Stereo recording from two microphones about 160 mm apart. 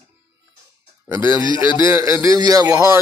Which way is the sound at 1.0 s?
15° right (ahead or behind).